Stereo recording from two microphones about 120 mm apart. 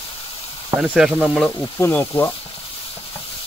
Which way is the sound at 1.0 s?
Centre (ahead or behind).